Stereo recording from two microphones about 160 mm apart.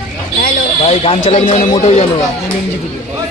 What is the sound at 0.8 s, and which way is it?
A man's voice, 40° left (ahead or behind).